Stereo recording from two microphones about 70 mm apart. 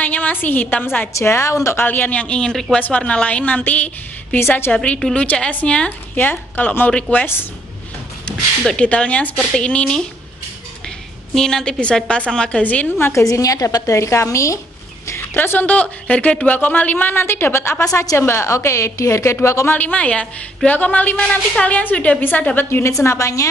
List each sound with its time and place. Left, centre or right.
0.0 s a woman's voice: left
1.1 s a woman's voice: left
1.9 s a woman's voice: left
4.4 s a woman's voice: left
4.8 s a woman's voice: centre
6.1 s a woman's voice: left
8.3 s a woman's voice: centre
11.3 s a woman's voice: centre
13.1 s a woman's voice: left
15.0 s a woman's voice: left
19.7 s a woman's voice: left
22.8 s a woman's voice: left